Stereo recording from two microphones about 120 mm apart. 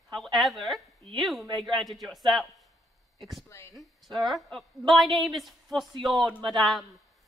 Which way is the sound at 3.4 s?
25° left (ahead or behind).